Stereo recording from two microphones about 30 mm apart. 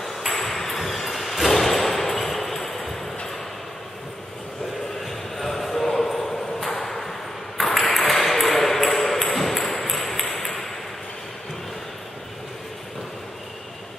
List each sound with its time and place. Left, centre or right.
0.0 s ping: centre
5.0 s a sound: centre
6.7 s ping: centre